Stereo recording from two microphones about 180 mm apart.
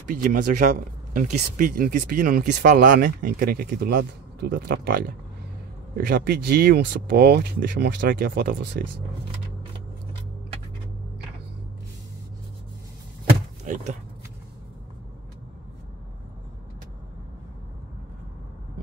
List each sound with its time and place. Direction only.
0.1 s speech: 50° right (ahead or behind)
13.7 s speech: 45° right (ahead or behind)